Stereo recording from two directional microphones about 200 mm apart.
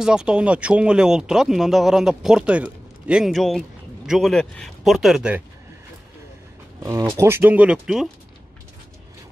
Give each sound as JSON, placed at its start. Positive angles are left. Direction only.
{"t": 0.0, "sound": "speech", "side_deg": -5}
{"t": 6.8, "sound": "speech", "side_deg": -15}